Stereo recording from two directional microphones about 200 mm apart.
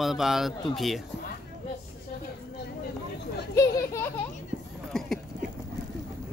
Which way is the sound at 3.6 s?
15° left (ahead or behind).